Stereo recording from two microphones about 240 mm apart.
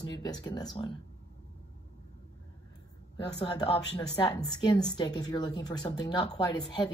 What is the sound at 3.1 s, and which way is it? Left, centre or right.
A woman's voice, centre.